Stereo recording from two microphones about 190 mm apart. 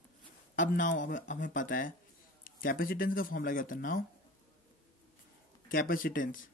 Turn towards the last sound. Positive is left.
turn(degrees=45)  # may be behind; listen again after turning